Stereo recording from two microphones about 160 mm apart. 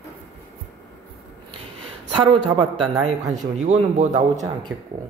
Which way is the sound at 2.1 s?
30° right (ahead or behind).